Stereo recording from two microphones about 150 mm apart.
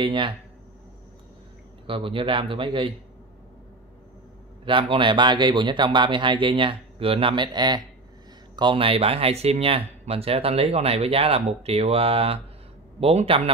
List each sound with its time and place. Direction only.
0.0 s speech: 35° right (ahead or behind)
1.9 s speech: 35° right (ahead or behind)
4.6 s speech: 35° right (ahead or behind)